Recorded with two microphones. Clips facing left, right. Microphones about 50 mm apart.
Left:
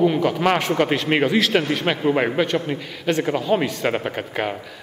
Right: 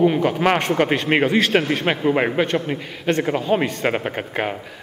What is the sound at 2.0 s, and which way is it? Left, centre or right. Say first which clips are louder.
A man's voice: even; centre.